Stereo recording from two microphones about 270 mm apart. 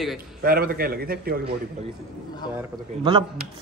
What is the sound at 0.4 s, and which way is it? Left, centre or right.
A man's voice, right.